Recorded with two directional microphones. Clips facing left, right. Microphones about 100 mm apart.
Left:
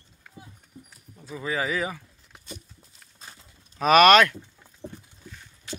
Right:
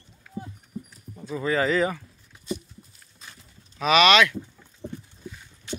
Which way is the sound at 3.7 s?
45° left (ahead or behind).